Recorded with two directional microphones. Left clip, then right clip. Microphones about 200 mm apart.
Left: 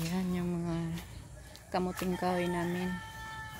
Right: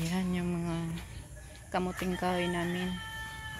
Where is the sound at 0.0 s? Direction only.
5° left (ahead or behind).